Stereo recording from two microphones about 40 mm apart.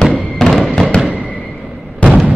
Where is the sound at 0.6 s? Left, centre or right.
Centre.